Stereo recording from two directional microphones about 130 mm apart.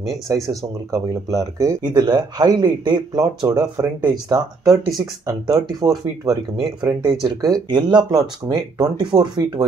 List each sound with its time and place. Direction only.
0.3 s speech: 25° right (ahead or behind)